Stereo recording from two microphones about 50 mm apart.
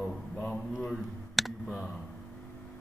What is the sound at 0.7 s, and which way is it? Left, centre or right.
Speech, centre.